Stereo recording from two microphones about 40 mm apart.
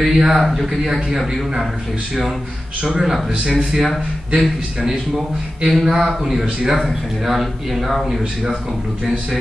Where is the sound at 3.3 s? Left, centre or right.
Centre.